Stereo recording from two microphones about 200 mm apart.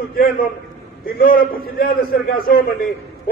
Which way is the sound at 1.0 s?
45° left (ahead or behind).